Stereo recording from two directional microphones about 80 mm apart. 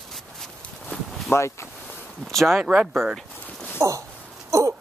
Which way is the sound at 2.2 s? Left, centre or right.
Centre.